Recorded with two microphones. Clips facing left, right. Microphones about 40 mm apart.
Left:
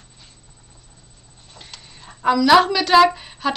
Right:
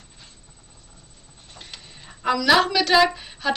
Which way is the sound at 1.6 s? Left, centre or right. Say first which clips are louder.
Even; centre.